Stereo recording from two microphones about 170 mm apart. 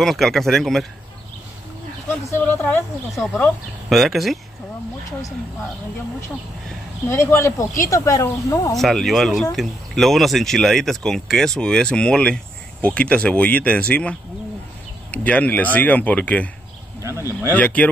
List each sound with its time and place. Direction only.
0.0 s speech: centre (ahead or behind)
2.0 s speech: 15° left (ahead or behind)
3.9 s speech: centre (ahead or behind)
7.1 s speech: 15° left (ahead or behind)
8.7 s speech: centre (ahead or behind)
17.0 s speech: 15° right (ahead or behind)
17.8 s speech: 10° left (ahead or behind)